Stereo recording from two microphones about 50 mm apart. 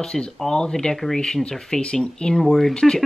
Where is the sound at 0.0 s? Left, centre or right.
Centre.